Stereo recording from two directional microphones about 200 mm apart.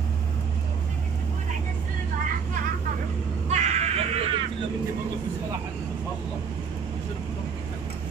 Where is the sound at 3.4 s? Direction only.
35° right (ahead or behind).